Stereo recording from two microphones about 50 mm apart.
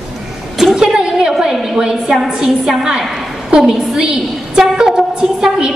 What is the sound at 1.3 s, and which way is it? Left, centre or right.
A woman's voice, centre.